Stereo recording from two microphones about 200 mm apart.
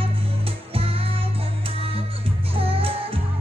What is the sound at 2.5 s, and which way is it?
Music, 30° right (ahead or behind).